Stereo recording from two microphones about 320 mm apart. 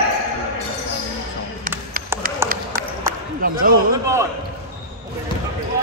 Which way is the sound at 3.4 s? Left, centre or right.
Right.